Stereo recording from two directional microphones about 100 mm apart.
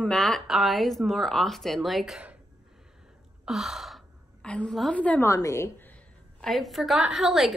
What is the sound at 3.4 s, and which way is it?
Sigh, 5° right (ahead or behind).